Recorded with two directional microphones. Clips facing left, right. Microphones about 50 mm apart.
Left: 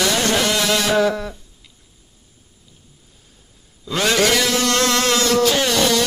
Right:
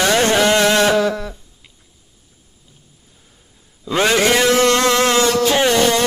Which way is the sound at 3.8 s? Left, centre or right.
Right.